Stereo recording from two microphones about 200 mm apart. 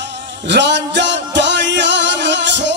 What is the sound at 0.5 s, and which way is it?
Music, 60° right (ahead or behind).